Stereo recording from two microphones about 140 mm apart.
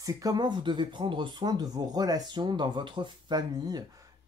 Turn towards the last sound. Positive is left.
turn(degrees=-25)  # may be behind; listen again after turning